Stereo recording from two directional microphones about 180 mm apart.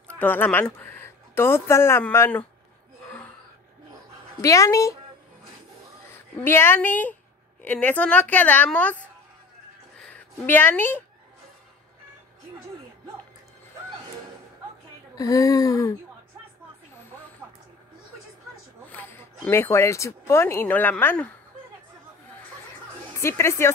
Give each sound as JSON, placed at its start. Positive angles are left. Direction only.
{"t": 0.2, "sound": "speech", "side_deg": 10}
{"t": 4.4, "sound": "a woman's voice", "side_deg": 15}
{"t": 6.1, "sound": "a woman's voice", "side_deg": 10}
{"t": 9.9, "sound": "speech", "side_deg": 5}
{"t": 15.1, "sound": "speech", "side_deg": 20}
{"t": 18.9, "sound": "speech", "side_deg": 10}
{"t": 23.1, "sound": "speech", "side_deg": 15}